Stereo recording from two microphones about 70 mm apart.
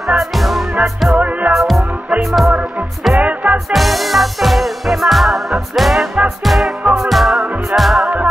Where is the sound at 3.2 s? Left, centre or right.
Right.